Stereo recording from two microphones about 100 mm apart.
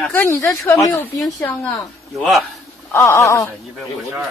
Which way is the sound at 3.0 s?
30° left (ahead or behind).